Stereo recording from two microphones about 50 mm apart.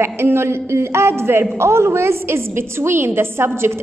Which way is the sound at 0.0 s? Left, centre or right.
Right.